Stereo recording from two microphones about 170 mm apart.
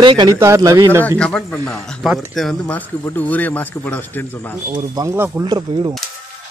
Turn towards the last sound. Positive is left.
turn(degrees=-25)  # may be behind; listen again after turning